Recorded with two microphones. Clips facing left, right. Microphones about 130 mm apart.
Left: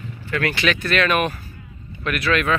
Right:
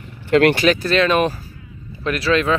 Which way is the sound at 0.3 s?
65° right (ahead or behind).